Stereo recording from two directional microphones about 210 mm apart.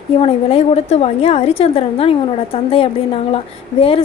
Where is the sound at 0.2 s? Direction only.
30° left (ahead or behind).